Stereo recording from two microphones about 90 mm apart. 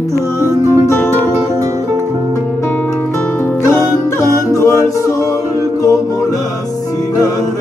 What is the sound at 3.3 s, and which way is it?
Music, 25° left (ahead or behind).